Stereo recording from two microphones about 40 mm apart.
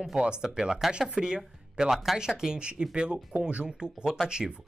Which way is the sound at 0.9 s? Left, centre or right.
Right.